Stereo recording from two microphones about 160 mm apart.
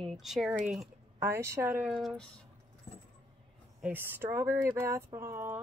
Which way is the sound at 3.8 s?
10° right (ahead or behind).